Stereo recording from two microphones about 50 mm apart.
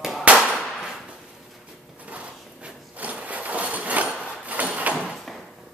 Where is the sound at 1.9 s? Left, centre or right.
Right.